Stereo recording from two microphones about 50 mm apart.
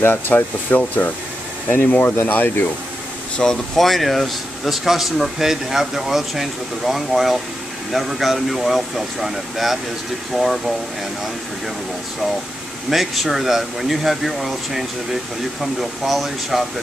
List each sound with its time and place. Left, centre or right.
0.0 s speech: left
3.4 s speech: centre
12.9 s speech: centre